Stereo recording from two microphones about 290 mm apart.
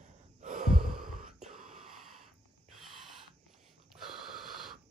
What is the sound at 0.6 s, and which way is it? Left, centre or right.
Gasp, centre.